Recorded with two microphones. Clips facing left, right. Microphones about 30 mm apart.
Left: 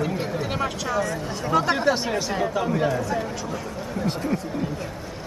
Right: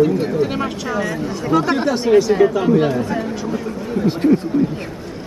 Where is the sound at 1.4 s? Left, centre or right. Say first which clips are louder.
Right 3 dB; centre.